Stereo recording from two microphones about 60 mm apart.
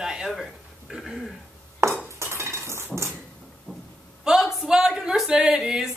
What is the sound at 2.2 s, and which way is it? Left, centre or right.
Cutlery, right.